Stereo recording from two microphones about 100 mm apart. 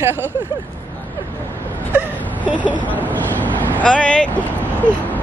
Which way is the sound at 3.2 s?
15° left (ahead or behind).